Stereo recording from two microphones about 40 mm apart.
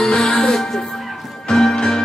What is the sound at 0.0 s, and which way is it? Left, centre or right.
Music, centre.